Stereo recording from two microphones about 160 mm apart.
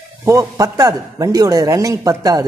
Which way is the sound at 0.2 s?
20° right (ahead or behind).